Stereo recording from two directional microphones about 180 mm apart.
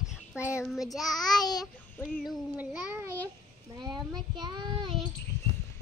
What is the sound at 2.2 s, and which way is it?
Speech, 5° right (ahead or behind).